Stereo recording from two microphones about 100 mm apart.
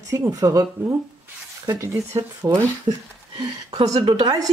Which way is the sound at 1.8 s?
30° right (ahead or behind).